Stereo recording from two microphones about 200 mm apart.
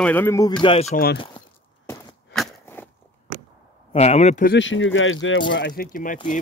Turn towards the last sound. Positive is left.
turn(degrees=40)  # may be behind; listen again after turning